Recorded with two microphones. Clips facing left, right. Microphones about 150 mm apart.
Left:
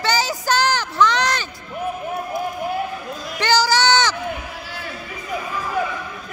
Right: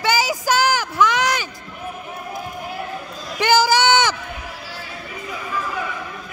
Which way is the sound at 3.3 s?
15° right (ahead or behind).